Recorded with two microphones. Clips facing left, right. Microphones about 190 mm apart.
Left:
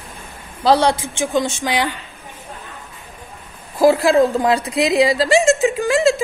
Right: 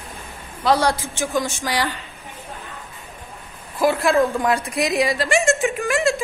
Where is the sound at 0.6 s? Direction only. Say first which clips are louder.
Left 4 dB; 30° left (ahead or behind).